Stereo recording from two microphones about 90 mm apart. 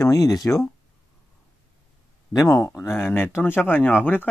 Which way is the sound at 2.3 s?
35° left (ahead or behind).